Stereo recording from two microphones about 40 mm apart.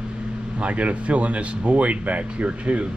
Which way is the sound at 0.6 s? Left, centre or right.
Right.